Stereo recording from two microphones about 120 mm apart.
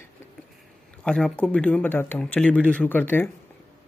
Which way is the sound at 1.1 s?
5° left (ahead or behind).